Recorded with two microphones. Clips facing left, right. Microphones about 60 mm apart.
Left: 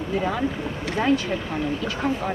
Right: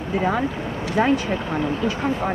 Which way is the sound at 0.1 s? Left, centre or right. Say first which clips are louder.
Right 3 dB; right.